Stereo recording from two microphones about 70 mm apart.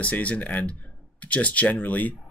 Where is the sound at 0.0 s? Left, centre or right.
Left.